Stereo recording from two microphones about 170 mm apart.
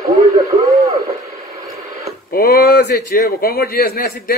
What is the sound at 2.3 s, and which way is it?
A man's voice, 60° left (ahead or behind).